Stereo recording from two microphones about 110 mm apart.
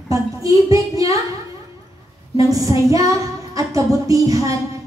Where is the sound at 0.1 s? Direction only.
30° right (ahead or behind).